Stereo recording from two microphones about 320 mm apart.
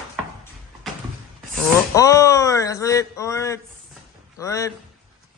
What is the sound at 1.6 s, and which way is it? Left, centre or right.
Speech, centre.